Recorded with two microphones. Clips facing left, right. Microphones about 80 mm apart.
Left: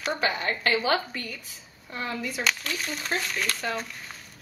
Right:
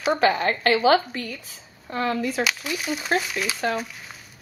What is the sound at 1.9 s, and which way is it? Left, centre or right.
Speech, right.